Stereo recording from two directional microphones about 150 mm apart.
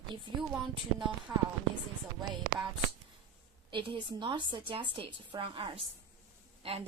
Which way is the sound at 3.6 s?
35° right (ahead or behind).